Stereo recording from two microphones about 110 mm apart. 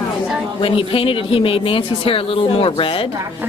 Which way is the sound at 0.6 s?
55° left (ahead or behind).